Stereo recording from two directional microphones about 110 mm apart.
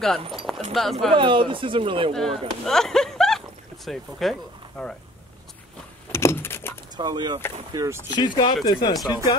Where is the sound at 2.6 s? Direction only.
5° left (ahead or behind).